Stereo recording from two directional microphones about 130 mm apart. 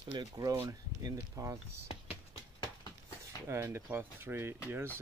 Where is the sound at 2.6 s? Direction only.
35° left (ahead or behind).